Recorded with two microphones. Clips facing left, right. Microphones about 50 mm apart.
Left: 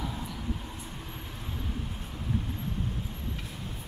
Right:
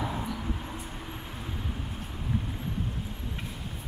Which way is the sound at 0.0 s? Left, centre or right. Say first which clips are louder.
Right 4 dB; right.